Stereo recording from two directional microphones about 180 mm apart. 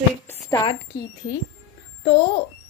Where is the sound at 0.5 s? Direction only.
25° left (ahead or behind).